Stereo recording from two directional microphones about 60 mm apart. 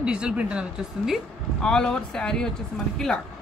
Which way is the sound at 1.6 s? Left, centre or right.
Centre.